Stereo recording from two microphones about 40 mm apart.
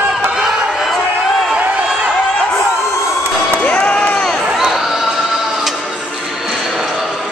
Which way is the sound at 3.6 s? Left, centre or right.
Left.